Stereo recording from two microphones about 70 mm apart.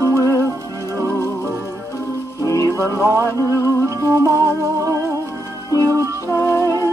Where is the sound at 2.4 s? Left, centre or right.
Left.